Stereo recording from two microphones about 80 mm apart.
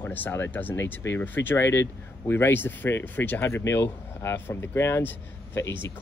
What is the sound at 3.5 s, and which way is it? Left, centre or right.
Speech, left.